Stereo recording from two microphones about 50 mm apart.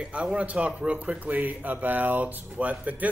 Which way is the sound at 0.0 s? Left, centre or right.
Right.